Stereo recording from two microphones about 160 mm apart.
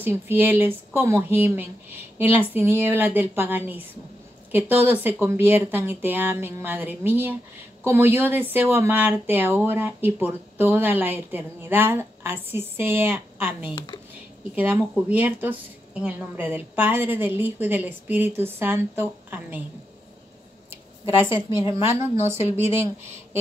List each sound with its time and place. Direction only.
0.0 s a woman's voice: 15° right (ahead or behind)
21.5 s speech: 15° right (ahead or behind)